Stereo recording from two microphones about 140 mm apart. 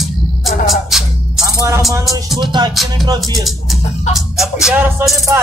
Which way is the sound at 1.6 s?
25° right (ahead or behind).